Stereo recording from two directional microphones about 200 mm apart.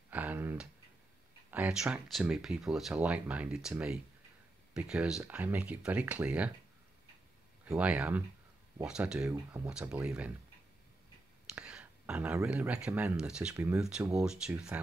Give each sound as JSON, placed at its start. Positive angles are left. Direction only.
{"t": 0.1, "sound": "a sound", "side_deg": -10}
{"t": 1.5, "sound": "speech", "side_deg": -5}
{"t": 7.6, "sound": "speech", "side_deg": -5}
{"t": 11.4, "sound": "speech", "side_deg": -5}